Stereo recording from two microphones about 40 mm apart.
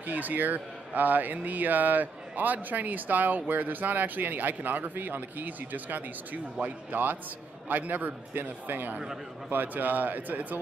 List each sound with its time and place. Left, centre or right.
0.0 s speech: right